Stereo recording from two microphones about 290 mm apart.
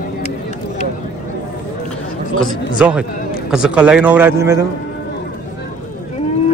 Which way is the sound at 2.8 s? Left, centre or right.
Centre.